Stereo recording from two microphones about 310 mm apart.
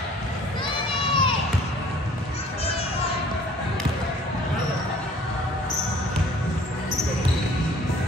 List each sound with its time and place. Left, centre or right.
0.7 s crowd: centre